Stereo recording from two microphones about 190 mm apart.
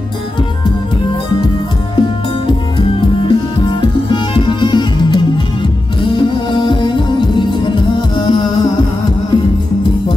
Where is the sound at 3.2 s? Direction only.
25° left (ahead or behind).